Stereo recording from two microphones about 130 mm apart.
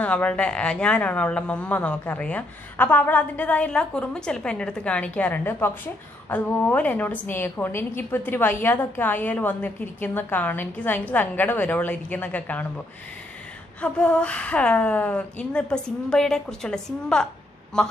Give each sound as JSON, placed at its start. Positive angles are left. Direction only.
{"t": 0.0, "sound": "a woman's voice", "side_deg": 10}